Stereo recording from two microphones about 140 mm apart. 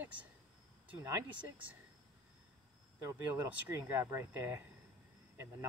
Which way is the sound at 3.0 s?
15° right (ahead or behind).